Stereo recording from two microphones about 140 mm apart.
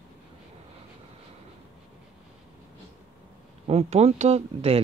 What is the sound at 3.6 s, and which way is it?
Speech, 50° right (ahead or behind).